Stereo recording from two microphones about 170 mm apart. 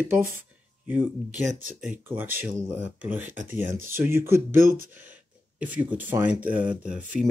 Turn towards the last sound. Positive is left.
turn(degrees=-5)  # may be behind; listen again after turning